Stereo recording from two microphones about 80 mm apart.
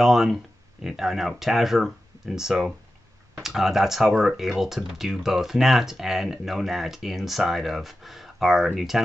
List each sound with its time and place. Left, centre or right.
0.0 s speech: centre